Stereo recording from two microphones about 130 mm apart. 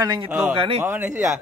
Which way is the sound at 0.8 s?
15° right (ahead or behind).